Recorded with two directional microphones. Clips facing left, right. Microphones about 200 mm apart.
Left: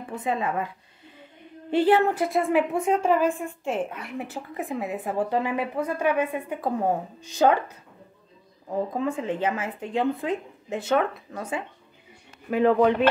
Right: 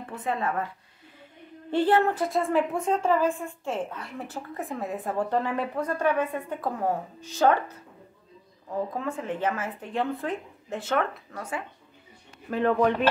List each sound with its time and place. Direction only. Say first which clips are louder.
0.1 s a woman's voice: left 2 dB; 15° left (ahead or behind)
1.7 s a woman's voice: left 2 dB; 10° left (ahead or behind)
8.6 s a woman's voice: left 4 dB; 15° left (ahead or behind)
12.4 s a woman's voice: left 4 dB; 10° left (ahead or behind)